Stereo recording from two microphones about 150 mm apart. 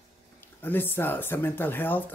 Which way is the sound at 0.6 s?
15° left (ahead or behind).